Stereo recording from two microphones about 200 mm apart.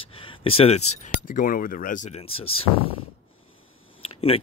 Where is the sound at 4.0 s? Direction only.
30° left (ahead or behind).